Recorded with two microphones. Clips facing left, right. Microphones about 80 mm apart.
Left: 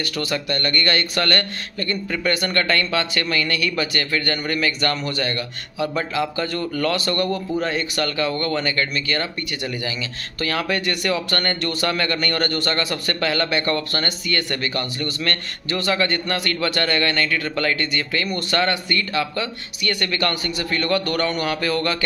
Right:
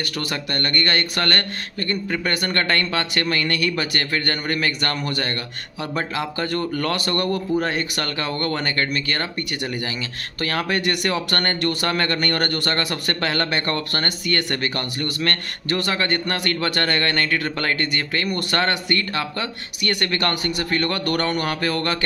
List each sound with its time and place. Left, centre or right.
0.2 s speech: right
10.4 s speech: right
10.8 s speech: right
15.9 s speech: right